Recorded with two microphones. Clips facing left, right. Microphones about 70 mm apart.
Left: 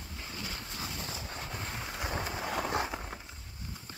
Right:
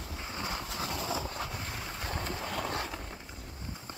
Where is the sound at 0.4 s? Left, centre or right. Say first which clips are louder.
Right 6 dB; right.